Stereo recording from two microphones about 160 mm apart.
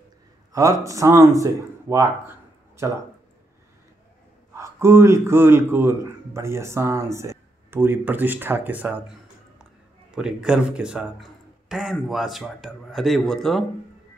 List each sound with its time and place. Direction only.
0.5 s speech: 20° right (ahead or behind)
4.6 s speech: 15° right (ahead or behind)
10.1 s a man's voice: 5° right (ahead or behind)